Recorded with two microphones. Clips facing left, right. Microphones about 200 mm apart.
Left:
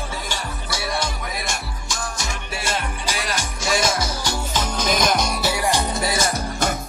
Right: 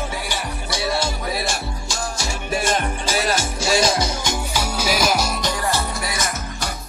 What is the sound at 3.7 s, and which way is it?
Music, 30° right (ahead or behind).